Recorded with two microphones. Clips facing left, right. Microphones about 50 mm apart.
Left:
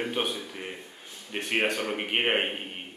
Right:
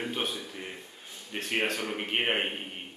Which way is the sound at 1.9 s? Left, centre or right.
Centre.